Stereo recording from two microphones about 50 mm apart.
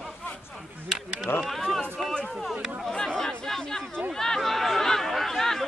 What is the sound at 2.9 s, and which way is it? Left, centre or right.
Speech, centre.